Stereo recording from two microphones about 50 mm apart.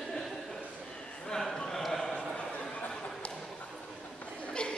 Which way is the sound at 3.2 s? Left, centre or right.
Left.